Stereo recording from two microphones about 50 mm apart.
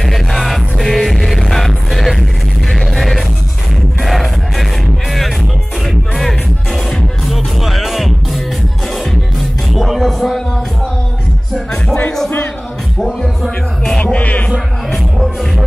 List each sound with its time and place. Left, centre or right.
0.0 s music: centre
6.1 s music: centre
9.8 s music: centre
11.7 s music: left
13.0 s music: centre
14.0 s music: left
14.9 s music: centre